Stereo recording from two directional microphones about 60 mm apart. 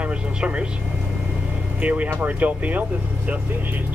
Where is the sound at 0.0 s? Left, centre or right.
Centre.